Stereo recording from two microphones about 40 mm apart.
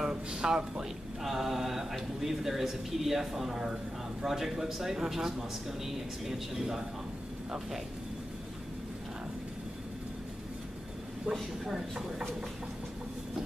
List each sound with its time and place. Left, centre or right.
0.1 s speech: right
1.2 s speech: centre
11.3 s a woman's voice: right
11.7 s speech: centre